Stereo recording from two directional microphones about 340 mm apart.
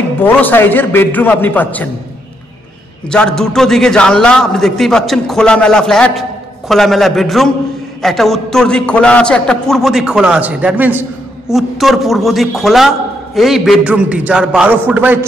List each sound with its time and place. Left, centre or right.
0.2 s a man's voice: centre
3.1 s a man's voice: centre